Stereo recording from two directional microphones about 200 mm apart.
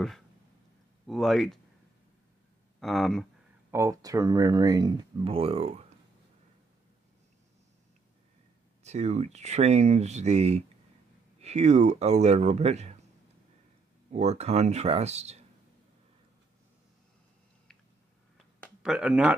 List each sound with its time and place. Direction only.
1.0 s speech: centre (ahead or behind)
2.8 s speech: centre (ahead or behind)
3.7 s speech: 15° right (ahead or behind); by 5.9 s 30° right (ahead or behind)
8.8 s speech: 35° right (ahead or behind)
14.1 s speech: 30° right (ahead or behind)
18.8 s speech: 5° right (ahead or behind)